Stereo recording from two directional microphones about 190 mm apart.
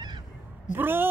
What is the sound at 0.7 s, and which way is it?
Speech, 10° right (ahead or behind).